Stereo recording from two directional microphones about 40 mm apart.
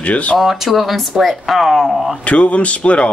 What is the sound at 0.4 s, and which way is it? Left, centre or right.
Speech, centre.